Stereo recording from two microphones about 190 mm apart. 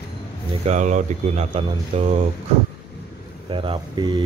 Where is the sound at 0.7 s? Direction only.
40° right (ahead or behind).